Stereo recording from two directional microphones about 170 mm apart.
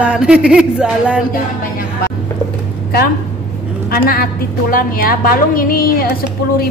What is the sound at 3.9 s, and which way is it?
A woman's voice, 60° left (ahead or behind).